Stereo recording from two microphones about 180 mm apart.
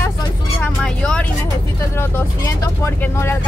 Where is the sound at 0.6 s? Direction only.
5° left (ahead or behind).